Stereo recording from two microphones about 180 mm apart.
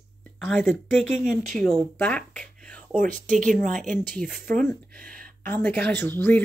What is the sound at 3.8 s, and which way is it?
Speech, 5° left (ahead or behind).